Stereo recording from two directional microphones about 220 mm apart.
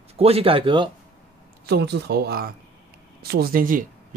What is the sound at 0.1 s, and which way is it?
Speech, 25° right (ahead or behind).